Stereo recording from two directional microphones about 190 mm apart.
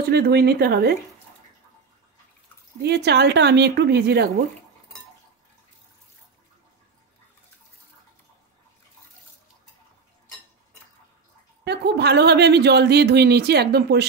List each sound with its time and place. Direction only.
0.1 s speech: 55° right (ahead or behind)
2.8 s speech: 60° right (ahead or behind)
11.6 s speech: 60° right (ahead or behind)